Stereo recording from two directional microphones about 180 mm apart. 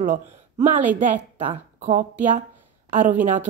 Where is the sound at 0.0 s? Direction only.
45° right (ahead or behind).